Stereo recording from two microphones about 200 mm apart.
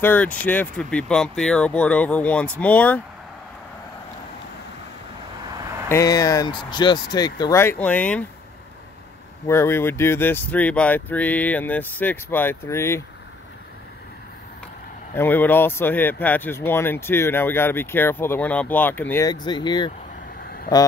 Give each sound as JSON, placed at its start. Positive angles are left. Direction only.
{"t": 0.0, "sound": "speech", "side_deg": 10}
{"t": 5.9, "sound": "speech", "side_deg": 15}
{"t": 9.5, "sound": "speech", "side_deg": 10}
{"t": 15.1, "sound": "speech", "side_deg": 10}